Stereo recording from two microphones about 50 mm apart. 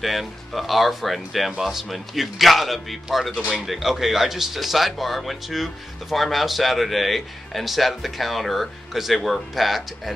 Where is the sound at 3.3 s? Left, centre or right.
Centre.